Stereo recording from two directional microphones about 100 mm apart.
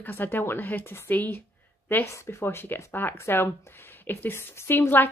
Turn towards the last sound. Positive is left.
turn(degrees=20)  # may be behind; listen again after turning